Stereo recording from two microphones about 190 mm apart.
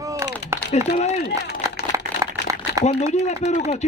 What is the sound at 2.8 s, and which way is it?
Speech, 35° left (ahead or behind).